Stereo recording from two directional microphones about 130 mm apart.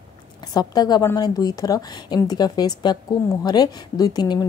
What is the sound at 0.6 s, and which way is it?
Speech, 30° left (ahead or behind).